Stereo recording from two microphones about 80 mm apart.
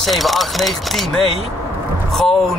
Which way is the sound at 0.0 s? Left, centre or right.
Centre.